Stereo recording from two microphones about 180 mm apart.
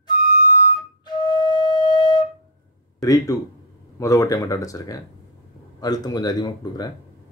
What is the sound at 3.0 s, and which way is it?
Speech, 20° left (ahead or behind).